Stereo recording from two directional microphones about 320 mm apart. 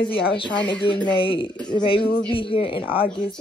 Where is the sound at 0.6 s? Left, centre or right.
Centre.